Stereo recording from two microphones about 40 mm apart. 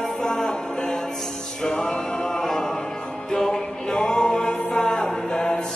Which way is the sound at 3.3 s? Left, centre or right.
Centre.